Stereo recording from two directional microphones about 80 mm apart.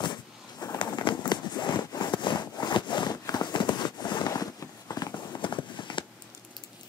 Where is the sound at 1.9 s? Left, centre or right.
Left.